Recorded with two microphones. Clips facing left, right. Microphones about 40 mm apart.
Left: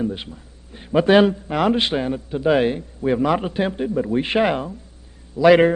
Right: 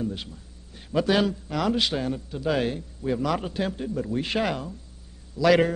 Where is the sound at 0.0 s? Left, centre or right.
Left.